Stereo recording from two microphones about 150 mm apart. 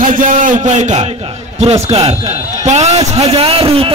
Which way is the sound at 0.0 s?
65° right (ahead or behind).